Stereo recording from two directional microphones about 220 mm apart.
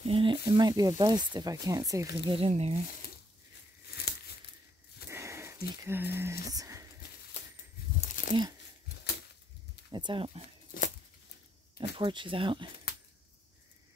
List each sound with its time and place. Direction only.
0.0 s speech: 25° right (ahead or behind)
2.3 s speech: 25° right (ahead or behind)
4.1 s crumpling: 50° left (ahead or behind)
5.1 s wheeze: 10° right (ahead or behind)
5.9 s speech: 10° right (ahead or behind)
6.5 s a sound: 15° right (ahead or behind)
8.1 s a sound: 35° left (ahead or behind)
9.8 s speech: 20° right (ahead or behind)
10.7 s tearing: 35° left (ahead or behind)
12.0 s speech: 20° right (ahead or behind)